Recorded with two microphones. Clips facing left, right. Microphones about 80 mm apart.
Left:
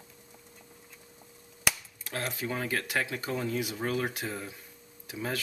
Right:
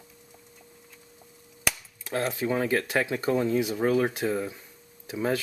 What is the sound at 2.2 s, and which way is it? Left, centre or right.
Speech, right.